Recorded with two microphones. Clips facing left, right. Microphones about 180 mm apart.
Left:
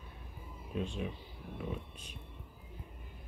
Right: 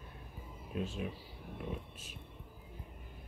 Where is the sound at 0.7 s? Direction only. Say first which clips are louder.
Left 1 dB; 5° right (ahead or behind).